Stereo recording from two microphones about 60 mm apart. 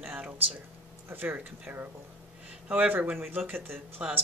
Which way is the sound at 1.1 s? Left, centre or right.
Right.